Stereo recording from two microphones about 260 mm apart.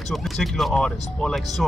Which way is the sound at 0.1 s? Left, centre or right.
Centre.